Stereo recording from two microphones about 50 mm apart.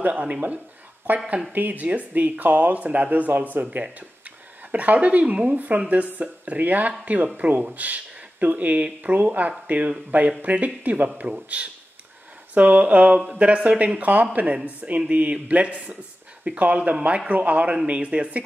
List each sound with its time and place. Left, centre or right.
0.0 s speech: right
4.6 s speech: right